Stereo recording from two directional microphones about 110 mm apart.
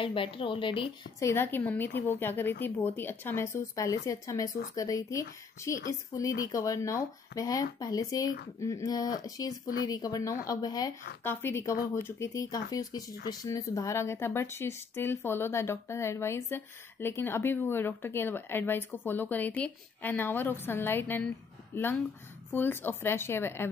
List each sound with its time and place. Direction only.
0.0 s a woman's voice: 50° left (ahead or behind)
1.2 s a woman's voice: 20° left (ahead or behind); by 10.9 s 35° left (ahead or behind)
11.2 s speech: 20° left (ahead or behind)